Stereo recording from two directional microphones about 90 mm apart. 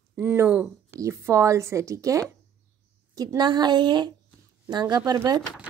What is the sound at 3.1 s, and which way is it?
Speech, 50° right (ahead or behind).